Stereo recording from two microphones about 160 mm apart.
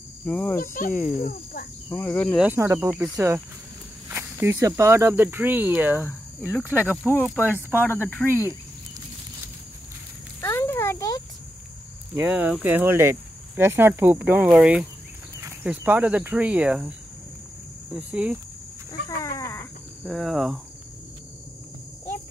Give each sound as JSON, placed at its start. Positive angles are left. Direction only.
{"t": 0.2, "sound": "speech", "side_deg": 10}
{"t": 0.6, "sound": "speech", "side_deg": 60}
{"t": 1.9, "sound": "speech", "side_deg": 15}
{"t": 2.3, "sound": "speech", "side_deg": -10}
{"t": 6.9, "sound": "speech", "side_deg": 10}
{"t": 10.4, "sound": "a sound", "side_deg": 15}
{"t": 12.2, "sound": "speech", "side_deg": -10}
{"t": 17.9, "sound": "speech", "side_deg": -5}
{"t": 18.9, "sound": "wild animals", "side_deg": 20}
{"t": 20.1, "sound": "speech", "side_deg": 0}